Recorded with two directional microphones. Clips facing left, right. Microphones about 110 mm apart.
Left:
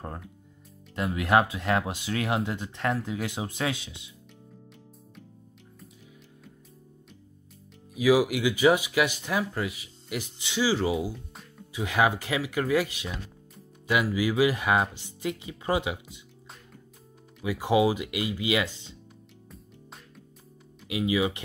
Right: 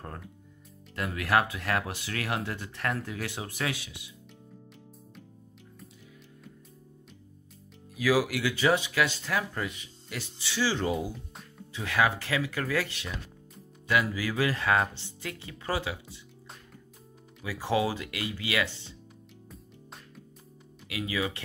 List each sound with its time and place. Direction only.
0.9 s speech: 20° left (ahead or behind)
7.9 s speech: 15° left (ahead or behind)
10.7 s music: 5° left (ahead or behind)
11.8 s speech: 15° left (ahead or behind)
14.1 s speech: 15° left (ahead or behind)
17.4 s speech: 15° left (ahead or behind)
20.9 s speech: 20° left (ahead or behind)